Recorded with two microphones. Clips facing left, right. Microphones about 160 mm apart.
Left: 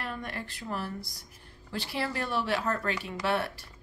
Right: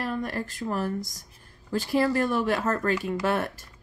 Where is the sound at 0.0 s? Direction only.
40° right (ahead or behind).